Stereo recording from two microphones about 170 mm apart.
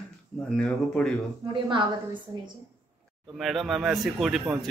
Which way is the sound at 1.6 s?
30° right (ahead or behind).